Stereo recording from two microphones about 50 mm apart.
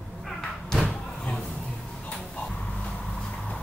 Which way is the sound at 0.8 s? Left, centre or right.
Left.